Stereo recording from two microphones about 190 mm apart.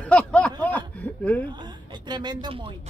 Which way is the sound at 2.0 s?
20° right (ahead or behind).